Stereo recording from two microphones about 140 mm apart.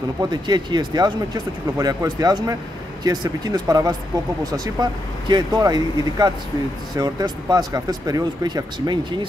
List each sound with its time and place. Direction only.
0.2 s speech: 30° right (ahead or behind)